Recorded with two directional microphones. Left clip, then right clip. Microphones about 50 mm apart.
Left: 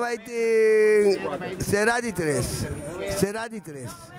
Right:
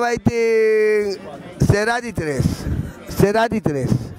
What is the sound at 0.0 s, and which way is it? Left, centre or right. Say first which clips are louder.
A man's voice: right 7 dB; right.